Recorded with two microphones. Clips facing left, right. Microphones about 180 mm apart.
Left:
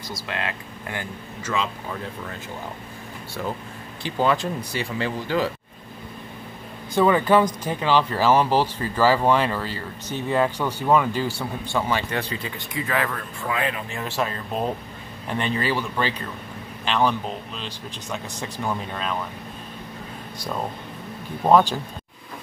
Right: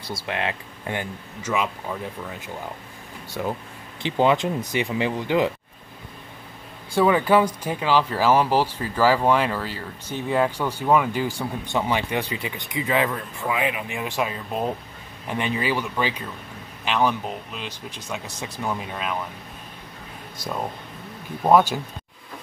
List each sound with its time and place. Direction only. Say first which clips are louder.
0.0 s speech: right 2 dB; 25° right (ahead or behind)
3.4 s speech: right 2 dB; 15° right (ahead or behind)
6.9 s speech: even; 10° right (ahead or behind)